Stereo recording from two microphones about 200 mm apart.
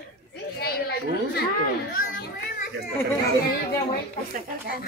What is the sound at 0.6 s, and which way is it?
Children playing, 50° left (ahead or behind).